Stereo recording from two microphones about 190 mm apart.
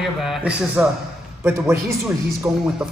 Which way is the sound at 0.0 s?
Centre (ahead or behind).